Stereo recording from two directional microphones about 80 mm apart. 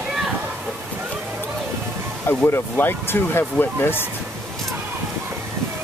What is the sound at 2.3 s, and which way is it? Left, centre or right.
Speech, left.